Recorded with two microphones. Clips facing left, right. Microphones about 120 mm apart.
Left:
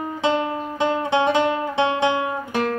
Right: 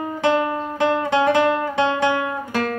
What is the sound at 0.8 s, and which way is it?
Music, 20° left (ahead or behind).